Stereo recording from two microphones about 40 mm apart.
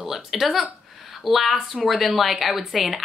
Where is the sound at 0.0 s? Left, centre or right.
Centre.